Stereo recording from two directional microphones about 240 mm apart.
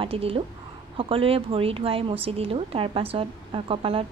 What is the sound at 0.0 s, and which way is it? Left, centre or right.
Speech, right.